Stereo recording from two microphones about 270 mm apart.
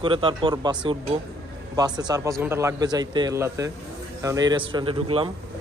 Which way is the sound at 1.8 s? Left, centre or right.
Centre.